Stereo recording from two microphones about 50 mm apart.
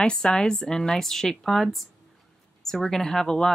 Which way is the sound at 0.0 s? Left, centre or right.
Centre.